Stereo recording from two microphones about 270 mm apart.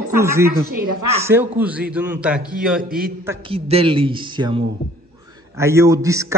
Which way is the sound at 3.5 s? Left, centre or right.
Right.